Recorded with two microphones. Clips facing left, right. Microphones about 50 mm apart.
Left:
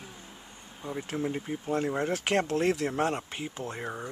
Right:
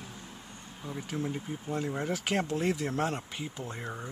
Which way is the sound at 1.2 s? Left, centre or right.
Left.